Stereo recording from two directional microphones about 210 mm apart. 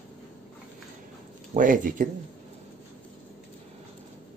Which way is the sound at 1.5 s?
40° right (ahead or behind).